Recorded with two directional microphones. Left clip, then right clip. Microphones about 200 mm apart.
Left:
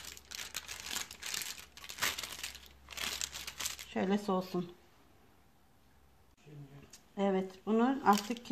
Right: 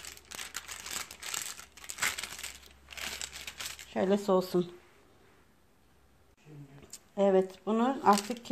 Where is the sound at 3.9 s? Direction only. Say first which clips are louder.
Right 7 dB; 30° right (ahead or behind).